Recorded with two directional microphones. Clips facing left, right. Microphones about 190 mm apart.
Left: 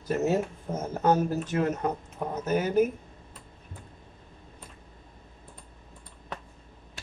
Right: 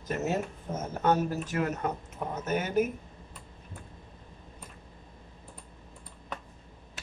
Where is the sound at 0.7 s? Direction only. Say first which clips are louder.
Left 2 dB; 30° left (ahead or behind).